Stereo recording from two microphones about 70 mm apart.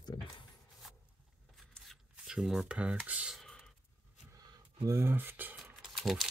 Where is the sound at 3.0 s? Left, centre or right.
Right.